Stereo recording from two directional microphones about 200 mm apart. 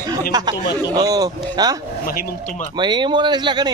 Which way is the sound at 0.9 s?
20° right (ahead or behind).